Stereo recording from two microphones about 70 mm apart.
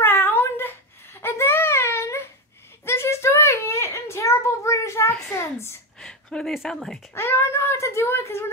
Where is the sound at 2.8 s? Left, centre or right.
Left.